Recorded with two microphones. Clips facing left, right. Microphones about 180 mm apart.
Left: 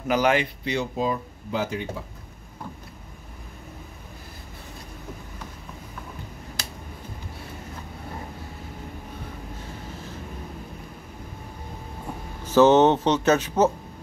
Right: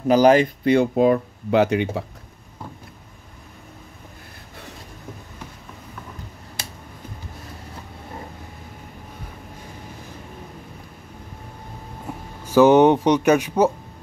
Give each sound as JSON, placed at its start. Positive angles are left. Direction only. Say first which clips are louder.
{"t": 0.1, "sound": "speech", "louder": "right 7 dB", "side_deg": -40}
{"t": 12.4, "sound": "speech", "louder": "right 3 dB", "side_deg": -10}